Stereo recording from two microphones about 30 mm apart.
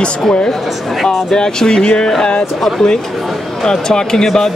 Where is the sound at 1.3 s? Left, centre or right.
Left.